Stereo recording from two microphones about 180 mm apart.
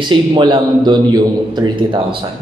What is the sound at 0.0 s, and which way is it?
A woman's voice, 25° right (ahead or behind).